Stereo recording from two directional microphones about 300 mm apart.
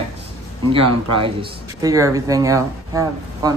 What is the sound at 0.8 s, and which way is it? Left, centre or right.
Speech, right.